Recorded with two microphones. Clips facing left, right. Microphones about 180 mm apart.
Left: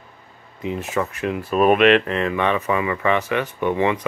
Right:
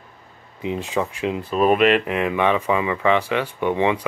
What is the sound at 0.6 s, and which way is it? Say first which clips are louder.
Speech: even; 15° right (ahead or behind).